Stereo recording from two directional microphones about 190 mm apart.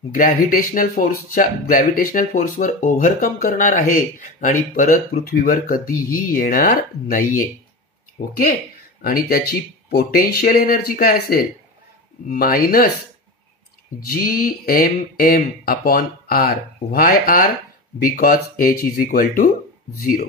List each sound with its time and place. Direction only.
0.1 s speech: 45° left (ahead or behind)
13.9 s speech: 50° left (ahead or behind)